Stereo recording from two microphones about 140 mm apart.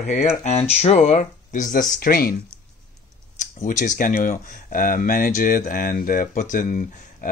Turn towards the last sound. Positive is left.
turn(degrees=65)  # may be behind; listen again after turning